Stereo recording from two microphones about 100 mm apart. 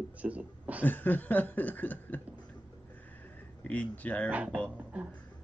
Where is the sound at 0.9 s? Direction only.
20° left (ahead or behind).